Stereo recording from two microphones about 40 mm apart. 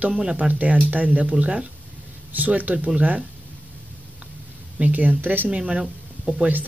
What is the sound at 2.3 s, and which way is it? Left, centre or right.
Speech, right.